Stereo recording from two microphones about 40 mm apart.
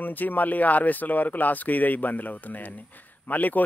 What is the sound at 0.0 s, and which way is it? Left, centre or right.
Speech, left.